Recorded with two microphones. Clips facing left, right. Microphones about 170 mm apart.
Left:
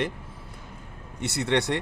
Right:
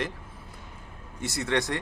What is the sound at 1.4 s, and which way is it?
Speech, 25° left (ahead or behind).